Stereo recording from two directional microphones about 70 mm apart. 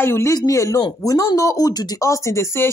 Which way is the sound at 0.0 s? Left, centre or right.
Left.